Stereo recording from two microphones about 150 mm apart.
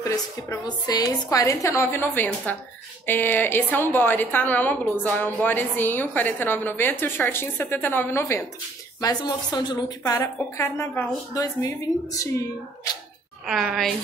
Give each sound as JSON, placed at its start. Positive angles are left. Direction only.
{"t": 0.0, "sound": "a woman's voice", "side_deg": 20}
{"t": 9.0, "sound": "a woman's voice", "side_deg": 30}
{"t": 13.5, "sound": "a woman's voice", "side_deg": 0}